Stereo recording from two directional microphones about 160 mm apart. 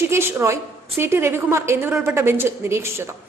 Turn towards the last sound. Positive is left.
turn(degrees=-15)  # may be behind; listen again after turning